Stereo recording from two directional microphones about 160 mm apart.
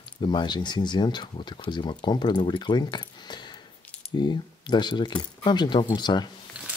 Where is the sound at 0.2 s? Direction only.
30° left (ahead or behind).